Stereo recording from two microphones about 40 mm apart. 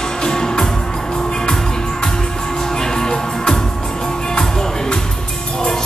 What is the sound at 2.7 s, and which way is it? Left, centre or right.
Music, centre.